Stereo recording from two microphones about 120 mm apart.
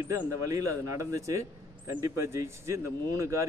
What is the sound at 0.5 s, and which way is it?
Speech, 25° right (ahead or behind).